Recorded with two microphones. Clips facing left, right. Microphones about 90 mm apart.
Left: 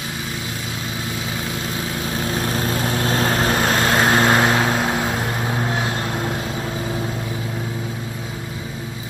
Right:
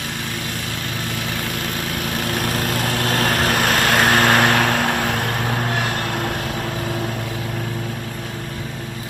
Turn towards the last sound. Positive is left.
turn(degrees=-20)  # may be behind; listen again after turning